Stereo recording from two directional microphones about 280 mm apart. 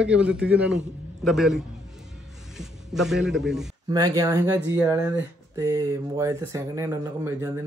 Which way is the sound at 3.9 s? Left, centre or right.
Centre.